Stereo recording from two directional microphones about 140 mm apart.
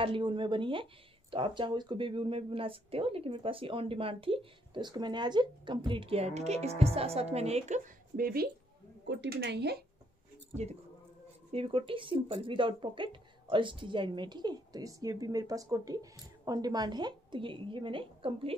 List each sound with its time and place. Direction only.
0.0 s speech: 35° right (ahead or behind); by 8.5 s 90° right
10.5 s speech: 50° right (ahead or behind)